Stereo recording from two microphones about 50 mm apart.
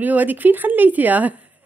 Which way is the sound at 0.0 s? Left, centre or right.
Right.